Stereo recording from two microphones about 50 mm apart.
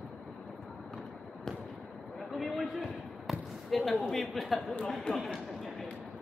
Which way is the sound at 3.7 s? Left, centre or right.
Centre.